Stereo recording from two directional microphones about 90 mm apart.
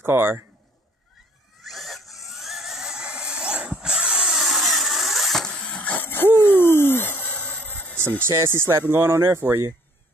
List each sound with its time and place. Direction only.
0.0 s speech: 25° right (ahead or behind)
1.6 s a sound: centre (ahead or behind)
5.8 s owl: 20° left (ahead or behind)
8.3 s speech: 30° right (ahead or behind)